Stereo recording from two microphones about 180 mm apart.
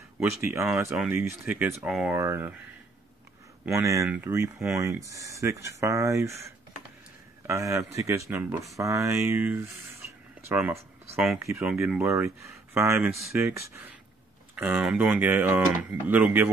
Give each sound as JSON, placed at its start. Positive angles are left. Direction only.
{"t": 0.2, "sound": "speech", "side_deg": -15}
{"t": 2.1, "sound": "speech", "side_deg": -15}
{"t": 3.6, "sound": "speech", "side_deg": -15}
{"t": 7.4, "sound": "speech", "side_deg": -15}
{"t": 11.8, "sound": "speech", "side_deg": -5}
{"t": 12.1, "sound": "speech", "side_deg": -15}